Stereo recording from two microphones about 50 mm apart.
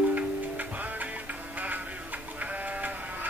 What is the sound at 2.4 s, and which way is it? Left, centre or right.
Sheep, right.